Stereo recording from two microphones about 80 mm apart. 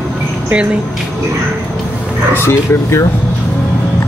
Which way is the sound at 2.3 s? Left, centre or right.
Left.